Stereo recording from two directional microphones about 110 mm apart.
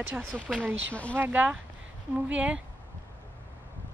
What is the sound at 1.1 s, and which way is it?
Speech, 15° right (ahead or behind).